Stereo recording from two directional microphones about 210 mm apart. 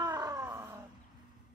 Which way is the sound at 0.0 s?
20° right (ahead or behind).